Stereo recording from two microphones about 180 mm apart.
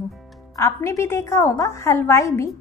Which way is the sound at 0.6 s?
15° left (ahead or behind).